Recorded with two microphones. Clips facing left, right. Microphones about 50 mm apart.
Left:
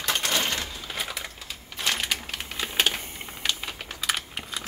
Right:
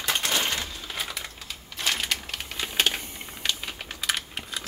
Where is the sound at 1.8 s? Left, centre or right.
Centre.